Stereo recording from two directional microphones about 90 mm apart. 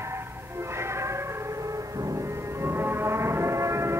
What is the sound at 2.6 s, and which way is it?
Music, 25° right (ahead or behind).